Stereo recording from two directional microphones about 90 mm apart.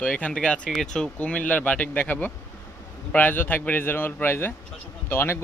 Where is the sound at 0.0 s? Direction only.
15° left (ahead or behind).